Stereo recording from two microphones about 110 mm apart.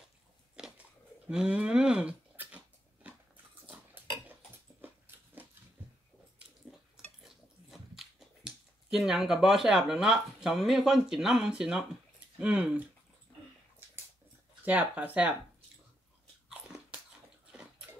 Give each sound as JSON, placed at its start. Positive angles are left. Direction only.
{"t": 1.3, "sound": "dog", "side_deg": -10}
{"t": 4.8, "sound": "a sound", "side_deg": -15}
{"t": 7.2, "sound": "speech", "side_deg": -5}
{"t": 14.6, "sound": "speech", "side_deg": -15}
{"t": 16.4, "sound": "biting", "side_deg": -5}